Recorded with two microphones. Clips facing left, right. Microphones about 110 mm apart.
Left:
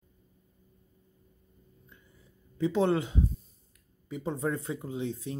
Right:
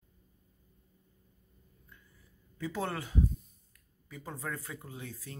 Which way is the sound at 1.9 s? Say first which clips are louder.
Left 1 dB; 20° left (ahead or behind).